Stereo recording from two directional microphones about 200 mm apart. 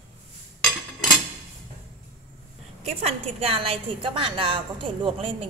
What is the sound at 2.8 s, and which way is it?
A woman's voice, 30° right (ahead or behind).